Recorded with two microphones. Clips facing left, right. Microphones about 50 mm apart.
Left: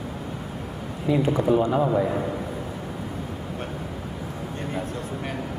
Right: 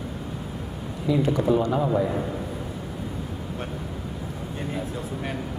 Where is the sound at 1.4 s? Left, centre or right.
Centre.